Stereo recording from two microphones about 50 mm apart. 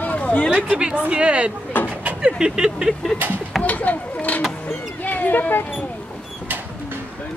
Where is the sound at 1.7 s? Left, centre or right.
Left.